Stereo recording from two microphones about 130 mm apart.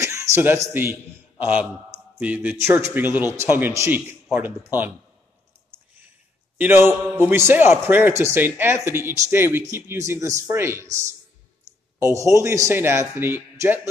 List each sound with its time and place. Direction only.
0.0 s a sound: 20° right (ahead or behind)
1.4 s a man's voice: 10° right (ahead or behind)
6.6 s a man's voice: 20° right (ahead or behind)